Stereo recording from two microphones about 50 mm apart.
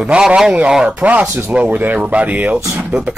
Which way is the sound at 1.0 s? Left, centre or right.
Right.